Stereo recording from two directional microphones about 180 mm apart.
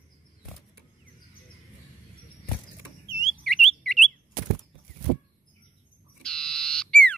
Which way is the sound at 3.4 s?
5° left (ahead or behind).